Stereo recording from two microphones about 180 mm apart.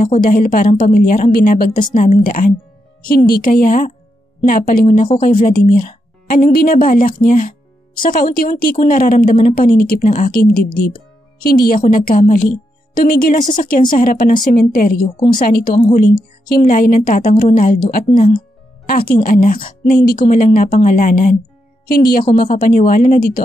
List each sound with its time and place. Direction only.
0.0 s a woman's voice: 50° left (ahead or behind)